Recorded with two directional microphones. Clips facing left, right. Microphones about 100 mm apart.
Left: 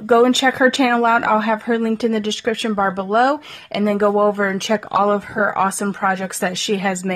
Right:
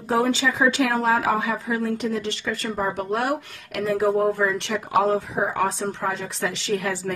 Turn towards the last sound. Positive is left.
turn(degrees=85)